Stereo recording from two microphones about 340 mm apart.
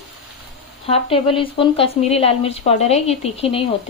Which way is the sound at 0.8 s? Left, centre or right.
Centre.